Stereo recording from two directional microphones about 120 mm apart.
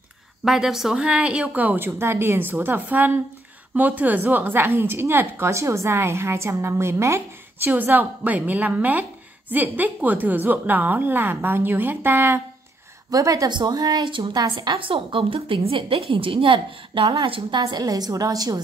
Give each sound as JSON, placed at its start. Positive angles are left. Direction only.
{"t": 0.5, "sound": "a woman's voice", "side_deg": -5}
{"t": 13.1, "sound": "a woman's voice", "side_deg": -30}